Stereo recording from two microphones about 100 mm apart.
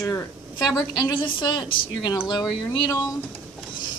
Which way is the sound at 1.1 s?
55° left (ahead or behind).